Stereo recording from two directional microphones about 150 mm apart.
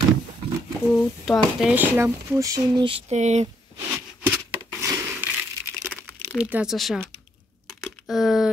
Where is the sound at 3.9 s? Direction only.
10° right (ahead or behind).